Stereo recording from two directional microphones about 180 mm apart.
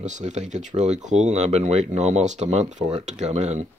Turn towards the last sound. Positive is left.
turn(degrees=-40)  # may be behind; listen again after turning